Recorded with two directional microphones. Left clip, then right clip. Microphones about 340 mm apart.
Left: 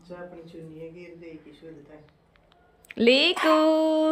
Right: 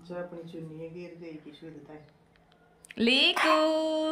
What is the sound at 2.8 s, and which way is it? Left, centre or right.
Speech, centre.